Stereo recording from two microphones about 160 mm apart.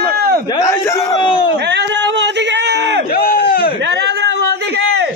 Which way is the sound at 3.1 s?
65° left (ahead or behind).